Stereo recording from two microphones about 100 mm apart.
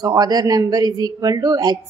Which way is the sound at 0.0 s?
40° right (ahead or behind).